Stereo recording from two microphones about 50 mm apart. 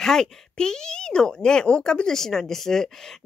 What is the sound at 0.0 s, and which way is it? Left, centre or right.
Speech, centre.